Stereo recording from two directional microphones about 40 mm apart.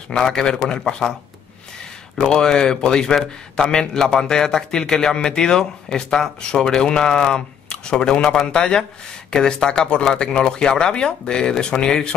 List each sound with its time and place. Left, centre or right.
0.1 s a man's voice: centre
2.1 s a man's voice: centre
8.2 s speech: centre
8.5 s speech: centre